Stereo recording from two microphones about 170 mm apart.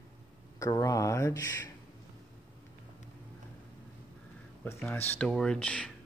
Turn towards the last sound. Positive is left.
turn(degrees=5)  # may be behind; listen again after turning